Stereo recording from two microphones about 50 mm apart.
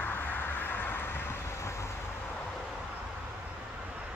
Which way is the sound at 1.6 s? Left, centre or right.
Left.